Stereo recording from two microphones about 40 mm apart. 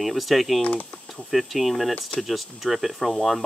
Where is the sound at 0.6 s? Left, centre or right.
Left.